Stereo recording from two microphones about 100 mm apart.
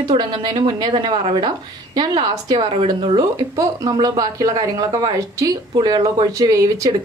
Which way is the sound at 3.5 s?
35° right (ahead or behind).